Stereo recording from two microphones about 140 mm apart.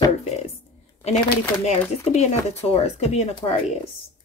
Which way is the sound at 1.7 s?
50° left (ahead or behind).